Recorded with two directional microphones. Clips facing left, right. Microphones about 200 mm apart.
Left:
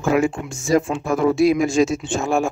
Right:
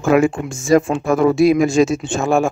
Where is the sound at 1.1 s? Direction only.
65° right (ahead or behind).